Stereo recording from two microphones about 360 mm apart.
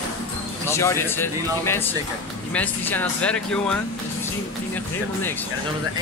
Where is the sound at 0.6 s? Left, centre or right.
Centre.